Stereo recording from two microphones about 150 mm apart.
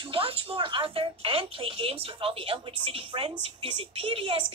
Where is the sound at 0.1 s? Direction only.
40° right (ahead or behind).